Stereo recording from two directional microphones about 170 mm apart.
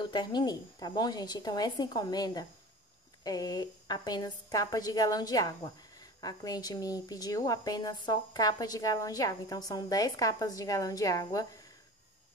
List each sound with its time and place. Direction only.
0.0 s a woman's voice: 25° left (ahead or behind)